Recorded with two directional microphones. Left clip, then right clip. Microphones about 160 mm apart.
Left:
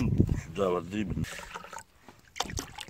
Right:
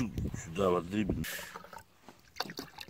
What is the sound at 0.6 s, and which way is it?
Speech, 45° left (ahead or behind).